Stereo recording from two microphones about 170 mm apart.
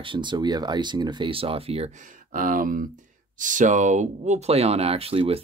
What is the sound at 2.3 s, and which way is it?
Speech, 55° right (ahead or behind).